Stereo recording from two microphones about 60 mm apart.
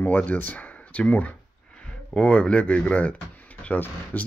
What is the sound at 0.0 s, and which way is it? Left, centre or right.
Speech, left.